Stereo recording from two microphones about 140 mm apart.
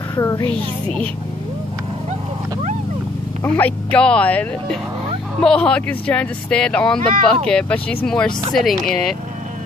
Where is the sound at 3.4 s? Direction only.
10° left (ahead or behind).